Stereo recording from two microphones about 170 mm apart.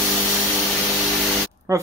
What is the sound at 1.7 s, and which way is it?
Speech, 15° right (ahead or behind).